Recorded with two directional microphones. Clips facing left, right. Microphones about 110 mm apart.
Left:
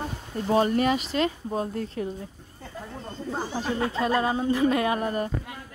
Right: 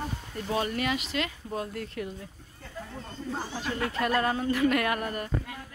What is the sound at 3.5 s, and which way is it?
Speech, 35° left (ahead or behind).